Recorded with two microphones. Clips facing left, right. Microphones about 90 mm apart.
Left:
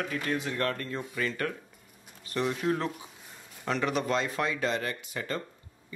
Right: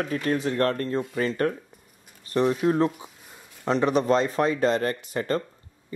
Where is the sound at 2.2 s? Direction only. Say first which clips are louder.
Right 8 dB; 30° right (ahead or behind).